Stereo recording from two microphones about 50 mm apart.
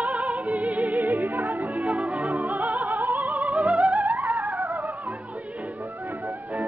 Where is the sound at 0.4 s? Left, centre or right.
Right.